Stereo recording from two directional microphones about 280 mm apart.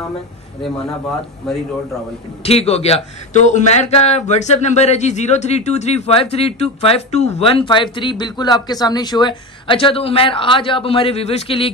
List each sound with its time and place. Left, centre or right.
1.4 s a man's voice: centre
2.4 s speech: left